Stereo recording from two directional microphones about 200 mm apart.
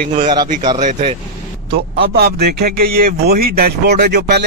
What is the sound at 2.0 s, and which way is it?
A man's voice, 50° right (ahead or behind).